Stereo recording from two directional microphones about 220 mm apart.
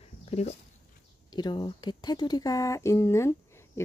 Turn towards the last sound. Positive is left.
turn(degrees=10)  # may be behind; listen again after turning